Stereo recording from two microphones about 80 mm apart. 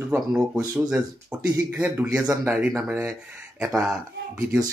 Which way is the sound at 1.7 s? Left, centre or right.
Right.